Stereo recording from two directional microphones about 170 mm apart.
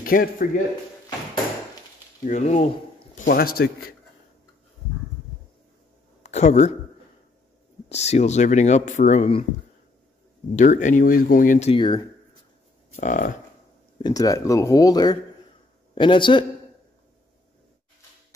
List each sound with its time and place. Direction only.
0.0 s a man's voice: 55° left (ahead or behind)
2.2 s speech: 45° left (ahead or behind)
3.3 s a man's voice: 65° left (ahead or behind)
6.2 s speech: 40° left (ahead or behind)
7.9 s speech: 40° left (ahead or behind)
10.5 s speech: 45° left (ahead or behind)
11.7 s speech: 25° left (ahead or behind)
12.9 s speech: 45° left (ahead or behind)
13.9 s a man's voice: 25° left (ahead or behind)